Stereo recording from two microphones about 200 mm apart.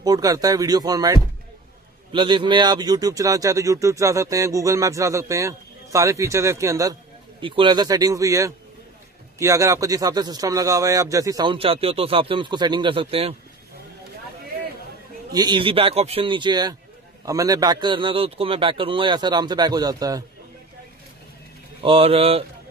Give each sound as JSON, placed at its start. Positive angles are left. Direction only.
{"t": 0.0, "sound": "speech", "side_deg": -20}
{"t": 15.3, "sound": "speech", "side_deg": -20}
{"t": 21.8, "sound": "speech", "side_deg": -30}